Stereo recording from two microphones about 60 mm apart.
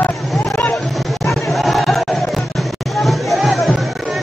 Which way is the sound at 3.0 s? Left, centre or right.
Centre.